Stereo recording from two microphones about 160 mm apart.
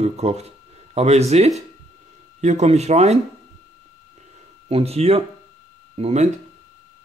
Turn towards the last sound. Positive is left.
turn(degrees=-45)  # may be behind; listen again after turning